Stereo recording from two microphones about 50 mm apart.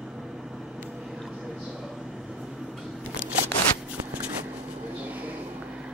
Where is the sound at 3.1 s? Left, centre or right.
Right.